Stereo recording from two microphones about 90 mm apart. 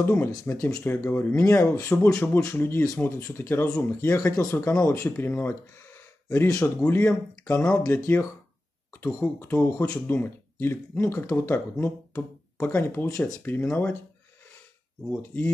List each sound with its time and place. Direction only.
0.0 s speech: 25° left (ahead or behind)
4.4 s speech: 40° left (ahead or behind); by 13.9 s 20° left (ahead or behind)
15.0 s speech: 20° left (ahead or behind)